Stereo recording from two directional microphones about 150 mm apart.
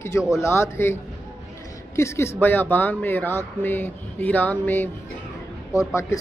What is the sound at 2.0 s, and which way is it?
Speech, 20° left (ahead or behind).